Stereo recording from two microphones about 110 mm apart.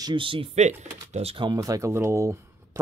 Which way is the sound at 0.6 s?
90° right.